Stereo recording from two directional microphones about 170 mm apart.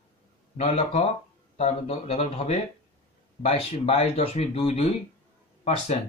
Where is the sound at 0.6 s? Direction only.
35° left (ahead or behind).